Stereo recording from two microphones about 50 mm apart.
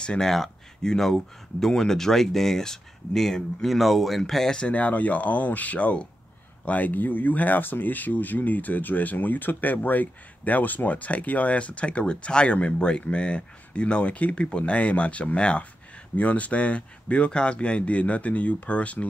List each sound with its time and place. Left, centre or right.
0.2 s speech: centre
4.6 s speech: left